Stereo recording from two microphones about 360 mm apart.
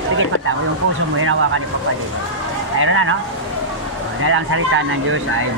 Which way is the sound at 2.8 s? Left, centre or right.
Right.